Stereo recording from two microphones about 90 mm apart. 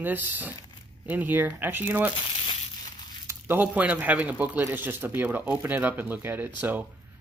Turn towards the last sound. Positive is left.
turn(degrees=-20)  # may be behind; listen again after turning